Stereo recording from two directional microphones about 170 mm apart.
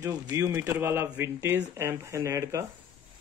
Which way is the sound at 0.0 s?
15° right (ahead or behind).